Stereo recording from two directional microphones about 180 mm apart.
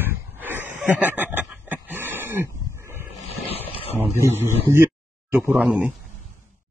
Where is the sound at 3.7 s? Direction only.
30° left (ahead or behind).